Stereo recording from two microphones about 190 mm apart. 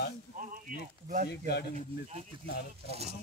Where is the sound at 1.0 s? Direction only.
40° right (ahead or behind).